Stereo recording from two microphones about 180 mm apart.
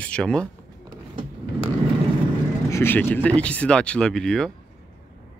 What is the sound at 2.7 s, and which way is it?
Speech, 10° left (ahead or behind).